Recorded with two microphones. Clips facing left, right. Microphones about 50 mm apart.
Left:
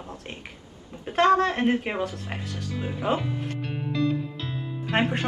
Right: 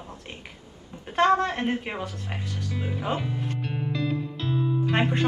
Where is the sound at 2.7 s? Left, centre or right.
Centre.